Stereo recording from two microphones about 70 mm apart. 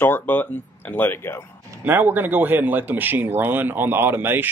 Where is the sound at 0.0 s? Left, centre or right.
Left.